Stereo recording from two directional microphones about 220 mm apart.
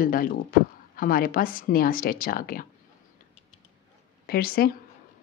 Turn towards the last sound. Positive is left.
turn(degrees=45)  # may be behind; listen again after turning